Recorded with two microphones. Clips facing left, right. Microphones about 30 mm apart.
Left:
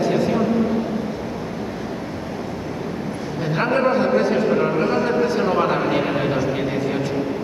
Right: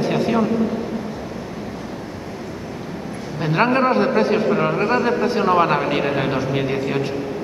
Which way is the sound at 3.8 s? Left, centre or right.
Right.